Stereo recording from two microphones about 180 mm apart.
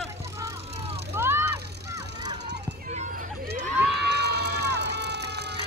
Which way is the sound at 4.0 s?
65° right (ahead or behind).